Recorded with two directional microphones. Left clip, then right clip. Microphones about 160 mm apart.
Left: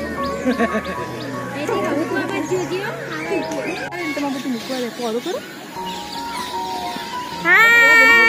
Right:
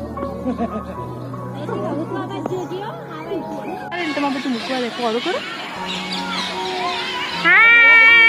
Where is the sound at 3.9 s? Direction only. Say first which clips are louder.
Right 6 dB; 35° right (ahead or behind).